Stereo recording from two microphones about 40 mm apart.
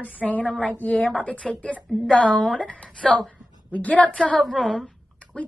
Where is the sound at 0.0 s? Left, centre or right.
Left.